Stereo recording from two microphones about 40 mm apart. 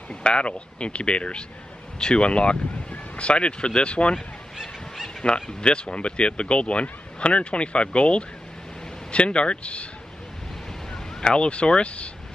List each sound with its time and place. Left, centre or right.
0.1 s speech: left
4.6 s squeal: centre
5.2 s speech: left
10.9 s speech: centre